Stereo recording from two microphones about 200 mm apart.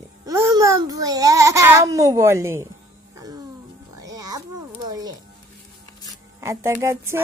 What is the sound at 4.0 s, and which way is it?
Music, 20° right (ahead or behind).